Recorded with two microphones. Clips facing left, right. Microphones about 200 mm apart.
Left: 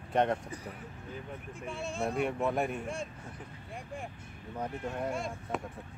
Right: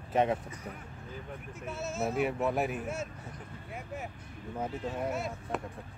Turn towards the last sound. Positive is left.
turn(degrees=-5)  # may be behind; listen again after turning